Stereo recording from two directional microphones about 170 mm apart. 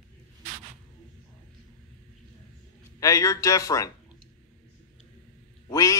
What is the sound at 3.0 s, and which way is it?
Speech, 20° left (ahead or behind).